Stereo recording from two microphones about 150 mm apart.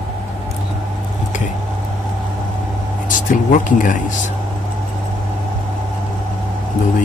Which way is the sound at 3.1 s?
60° left (ahead or behind).